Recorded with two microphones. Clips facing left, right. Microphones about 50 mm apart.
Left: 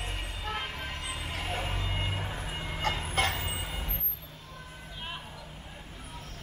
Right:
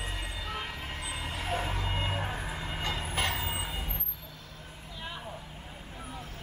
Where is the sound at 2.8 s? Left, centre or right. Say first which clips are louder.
Left 4 dB; left.